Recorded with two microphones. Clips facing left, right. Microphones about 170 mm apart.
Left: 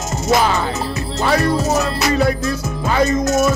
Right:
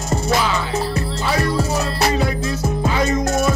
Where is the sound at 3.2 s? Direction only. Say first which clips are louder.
Left 3 dB; 30° right (ahead or behind).